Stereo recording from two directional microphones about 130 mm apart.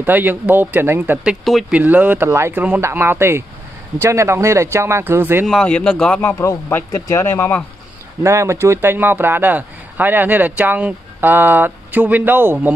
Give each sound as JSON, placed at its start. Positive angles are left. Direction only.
{"t": 0.0, "sound": "a man's voice", "side_deg": -15}
{"t": 1.3, "sound": "speech", "side_deg": 0}
{"t": 1.8, "sound": "a man's voice", "side_deg": -10}
{"t": 5.5, "sound": "a man's voice", "side_deg": 5}
{"t": 6.4, "sound": "speech", "side_deg": 25}
{"t": 8.2, "sound": "a man's voice", "side_deg": -20}